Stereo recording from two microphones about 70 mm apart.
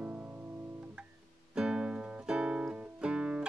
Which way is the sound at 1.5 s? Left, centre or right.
Centre.